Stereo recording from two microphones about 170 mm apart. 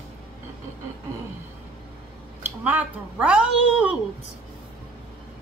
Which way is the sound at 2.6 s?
5° right (ahead or behind).